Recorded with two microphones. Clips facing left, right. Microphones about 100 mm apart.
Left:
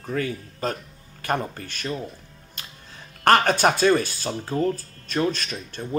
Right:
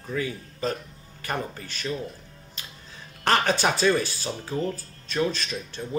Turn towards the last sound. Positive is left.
turn(degrees=50)  # may be behind; listen again after turning